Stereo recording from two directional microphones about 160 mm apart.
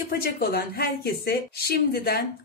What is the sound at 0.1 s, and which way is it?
A woman's voice, 75° left (ahead or behind).